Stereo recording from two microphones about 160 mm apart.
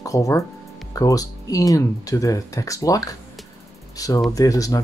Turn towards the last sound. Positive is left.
turn(degrees=20)  # may be behind; listen again after turning